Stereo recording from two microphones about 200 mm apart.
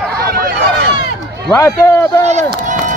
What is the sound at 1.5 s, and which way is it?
Speech, 15° left (ahead or behind).